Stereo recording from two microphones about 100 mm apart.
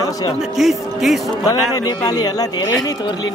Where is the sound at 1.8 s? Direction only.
40° left (ahead or behind).